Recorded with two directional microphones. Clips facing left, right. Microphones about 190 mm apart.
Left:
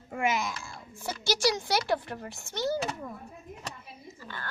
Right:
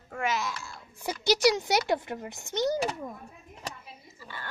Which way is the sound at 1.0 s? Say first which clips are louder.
Right 4 dB; 20° right (ahead or behind).